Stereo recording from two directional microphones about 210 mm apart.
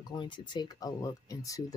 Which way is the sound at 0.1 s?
20° left (ahead or behind).